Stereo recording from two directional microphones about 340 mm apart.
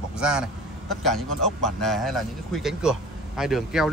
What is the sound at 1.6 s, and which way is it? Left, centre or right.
A man's voice, centre.